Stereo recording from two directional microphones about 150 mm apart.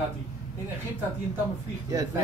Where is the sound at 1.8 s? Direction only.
20° right (ahead or behind).